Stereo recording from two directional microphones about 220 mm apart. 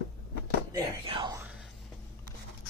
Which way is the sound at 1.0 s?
25° right (ahead or behind).